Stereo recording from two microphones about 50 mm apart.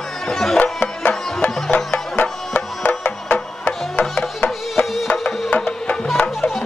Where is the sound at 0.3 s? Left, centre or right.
Centre.